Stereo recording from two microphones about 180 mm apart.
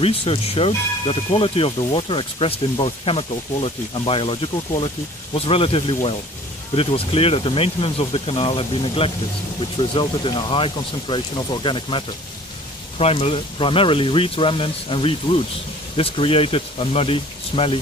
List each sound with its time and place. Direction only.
0.0 s speech: 30° left (ahead or behind)
13.0 s speech: 35° left (ahead or behind)